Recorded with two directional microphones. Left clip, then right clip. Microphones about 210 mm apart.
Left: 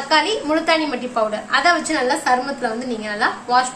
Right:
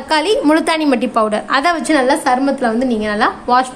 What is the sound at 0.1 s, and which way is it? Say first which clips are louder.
A woman's voice: right 5 dB; 50° right (ahead or behind).